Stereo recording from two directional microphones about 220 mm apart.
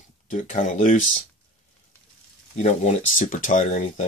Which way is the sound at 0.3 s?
35° left (ahead or behind).